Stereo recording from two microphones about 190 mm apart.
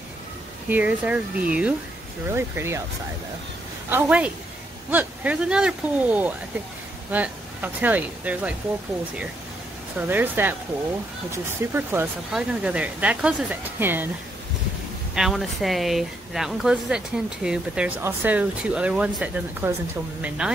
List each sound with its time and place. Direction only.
0.7 s speech: 10° right (ahead or behind)
3.9 s speech: 5° right (ahead or behind)
9.9 s speech: 10° right (ahead or behind)
15.1 s speech: centre (ahead or behind)